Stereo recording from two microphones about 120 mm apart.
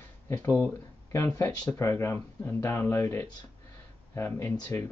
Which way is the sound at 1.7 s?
20° left (ahead or behind).